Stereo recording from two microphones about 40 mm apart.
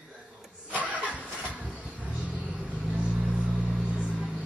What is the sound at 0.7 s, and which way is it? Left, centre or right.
Vehicle, right.